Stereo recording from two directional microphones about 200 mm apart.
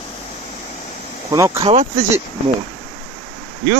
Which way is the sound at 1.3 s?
20° right (ahead or behind).